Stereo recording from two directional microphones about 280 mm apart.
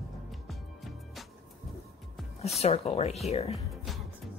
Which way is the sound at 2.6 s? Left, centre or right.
Left.